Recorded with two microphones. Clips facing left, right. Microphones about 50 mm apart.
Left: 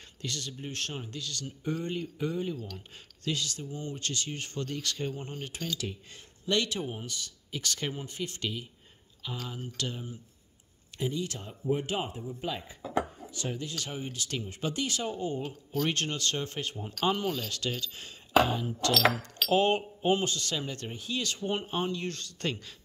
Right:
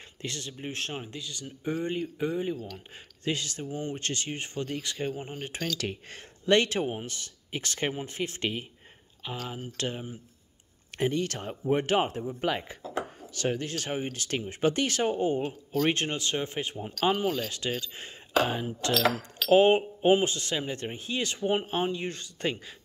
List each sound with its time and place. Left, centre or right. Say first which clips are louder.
0.2 s speech: right 1 dB; right
2.5 s speech: right 3 dB; centre
3.3 s speech: right 2 dB; right; by 5.4 s centre
5.8 s speech: right 4 dB; right
6.6 s speech: right 5 dB; right
11.0 s speech: right 5 dB; right
12.2 s speech: right 6 dB; right
15.9 s speech: right 3 dB; right